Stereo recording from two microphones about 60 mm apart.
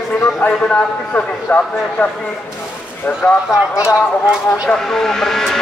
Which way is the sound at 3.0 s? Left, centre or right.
Left.